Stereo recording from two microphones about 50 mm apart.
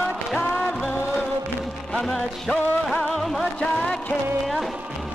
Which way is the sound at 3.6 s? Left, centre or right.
Centre.